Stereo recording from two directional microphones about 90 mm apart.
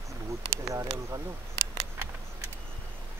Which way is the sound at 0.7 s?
35° right (ahead or behind).